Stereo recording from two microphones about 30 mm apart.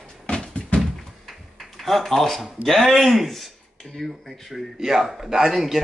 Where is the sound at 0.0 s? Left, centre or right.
Left.